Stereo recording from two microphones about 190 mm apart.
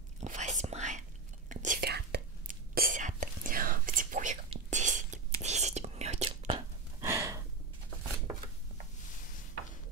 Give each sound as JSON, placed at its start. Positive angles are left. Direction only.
{"t": 0.2, "sound": "whispering", "side_deg": -40}
{"t": 7.0, "sound": "gasp", "side_deg": -15}